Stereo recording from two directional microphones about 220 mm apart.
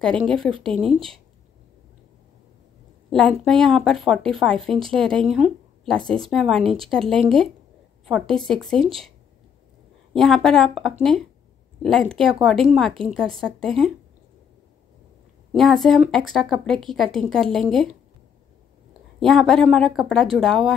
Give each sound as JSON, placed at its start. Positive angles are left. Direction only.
{"t": 0.0, "sound": "speech", "side_deg": 0}
{"t": 0.7, "sound": "speech", "side_deg": -25}
{"t": 3.1, "sound": "speech", "side_deg": 5}
{"t": 10.1, "sound": "speech", "side_deg": 0}
{"t": 15.5, "sound": "speech", "side_deg": 0}
{"t": 19.1, "sound": "speech", "side_deg": 0}